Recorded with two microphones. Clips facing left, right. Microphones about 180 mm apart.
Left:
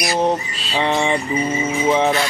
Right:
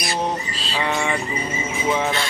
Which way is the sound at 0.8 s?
25° left (ahead or behind).